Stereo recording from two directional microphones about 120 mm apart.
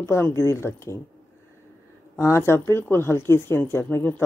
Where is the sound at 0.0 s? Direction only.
20° left (ahead or behind).